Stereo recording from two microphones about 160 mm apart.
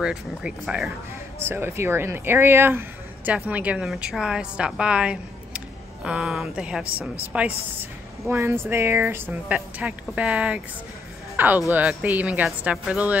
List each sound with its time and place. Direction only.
0.0 s a woman's voice: 5° right (ahead or behind)
1.4 s a woman's voice: 15° right (ahead or behind)